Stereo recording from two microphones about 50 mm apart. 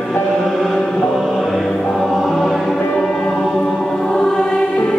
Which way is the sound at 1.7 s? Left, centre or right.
Centre.